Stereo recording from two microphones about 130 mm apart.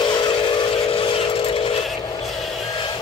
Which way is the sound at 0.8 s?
45° left (ahead or behind).